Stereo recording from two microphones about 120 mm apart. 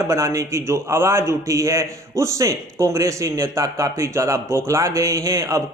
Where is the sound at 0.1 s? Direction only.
25° right (ahead or behind).